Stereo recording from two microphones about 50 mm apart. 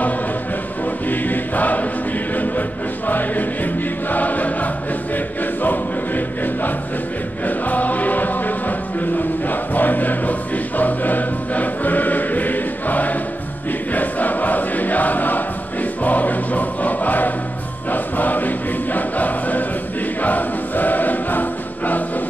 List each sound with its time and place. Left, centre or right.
1.0 s choir: left
2.3 s music: left
4.1 s choir: left
7.4 s music: left
13.9 s choir: left